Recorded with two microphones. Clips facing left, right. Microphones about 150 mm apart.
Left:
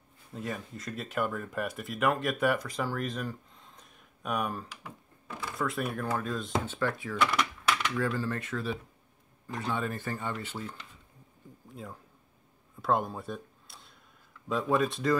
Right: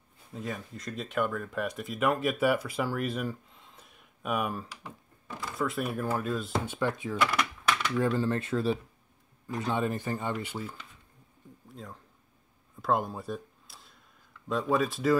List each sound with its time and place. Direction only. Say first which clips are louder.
0.3 s speech: even; centre (ahead or behind)
7.2 s a sound: left 2 dB; centre (ahead or behind)
8.2 s speech: right 5 dB; 25° right (ahead or behind)
9.5 s speech: right 3 dB; 20° right (ahead or behind)
11.7 s speech: left 1 dB; 5° left (ahead or behind)
12.8 s a sound: even; centre (ahead or behind)
14.5 s speech: even; centre (ahead or behind)